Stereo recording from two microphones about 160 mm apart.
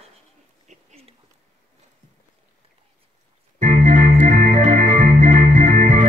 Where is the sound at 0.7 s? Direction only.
50° right (ahead or behind).